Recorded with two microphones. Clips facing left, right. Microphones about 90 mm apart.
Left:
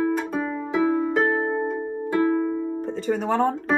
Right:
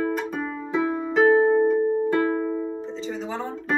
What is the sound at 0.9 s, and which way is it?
Music, 45° left (ahead or behind).